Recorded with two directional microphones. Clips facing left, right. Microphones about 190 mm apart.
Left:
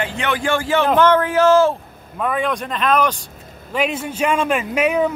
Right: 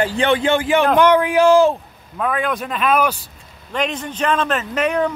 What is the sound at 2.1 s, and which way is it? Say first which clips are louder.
Speech: even; centre (ahead or behind).